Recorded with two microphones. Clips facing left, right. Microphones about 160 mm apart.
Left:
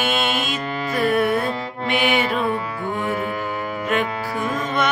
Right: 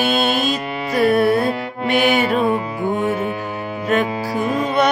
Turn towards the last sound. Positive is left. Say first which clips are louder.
# right 5 dB
turn(degrees=-35)  # may be behind; listen again after turning